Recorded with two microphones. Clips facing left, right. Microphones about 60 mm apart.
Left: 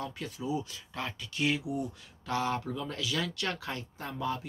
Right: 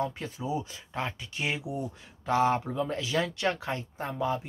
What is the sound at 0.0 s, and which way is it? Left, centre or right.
Speech, right.